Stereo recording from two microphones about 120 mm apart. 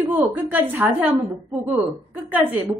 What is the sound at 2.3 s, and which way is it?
Speech, 15° right (ahead or behind).